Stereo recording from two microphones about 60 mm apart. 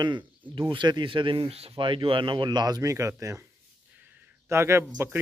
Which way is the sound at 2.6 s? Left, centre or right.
Right.